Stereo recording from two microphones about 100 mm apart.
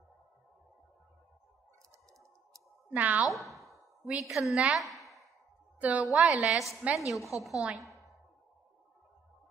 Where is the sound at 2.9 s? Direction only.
15° right (ahead or behind).